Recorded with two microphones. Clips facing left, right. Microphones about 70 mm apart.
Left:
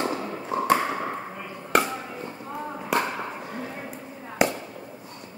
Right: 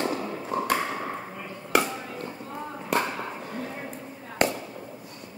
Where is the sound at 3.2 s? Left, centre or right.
Centre.